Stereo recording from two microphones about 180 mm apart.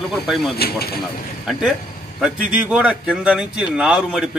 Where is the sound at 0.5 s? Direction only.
60° left (ahead or behind).